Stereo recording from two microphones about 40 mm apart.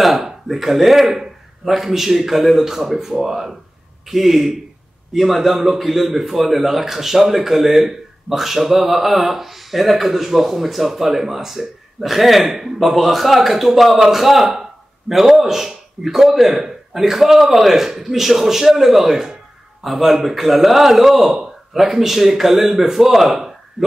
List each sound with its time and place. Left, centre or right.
0.0 s a man's voice: centre